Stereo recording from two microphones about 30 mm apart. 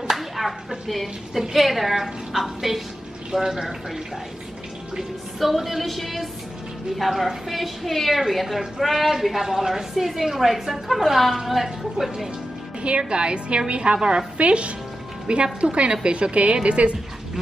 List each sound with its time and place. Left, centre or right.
0.1 s a sound: centre
1.5 s a woman's voice: centre
5.4 s a woman's voice: centre
12.8 s a woman's voice: right
13.9 s a woman's voice: right
14.4 s a woman's voice: right